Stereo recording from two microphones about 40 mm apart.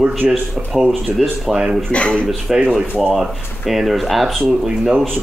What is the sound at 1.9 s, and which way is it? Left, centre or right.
Speech, left.